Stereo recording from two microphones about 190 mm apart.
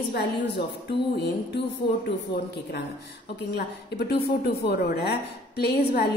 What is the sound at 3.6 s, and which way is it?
A woman's voice, 55° left (ahead or behind).